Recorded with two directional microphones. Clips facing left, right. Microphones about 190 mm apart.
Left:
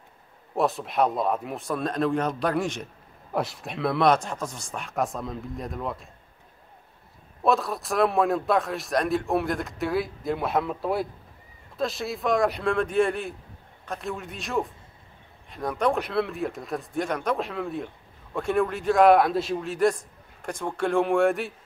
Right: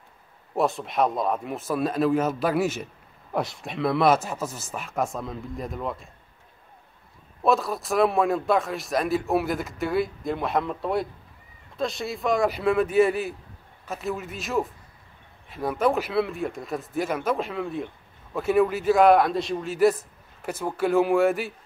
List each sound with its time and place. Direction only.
0.6 s speech: centre (ahead or behind)
7.4 s speech: centre (ahead or behind)